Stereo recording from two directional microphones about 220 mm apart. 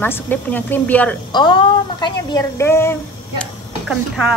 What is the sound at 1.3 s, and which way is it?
A woman's voice, 20° left (ahead or behind).